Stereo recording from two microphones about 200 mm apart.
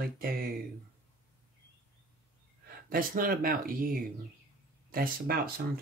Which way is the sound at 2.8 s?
45° right (ahead or behind).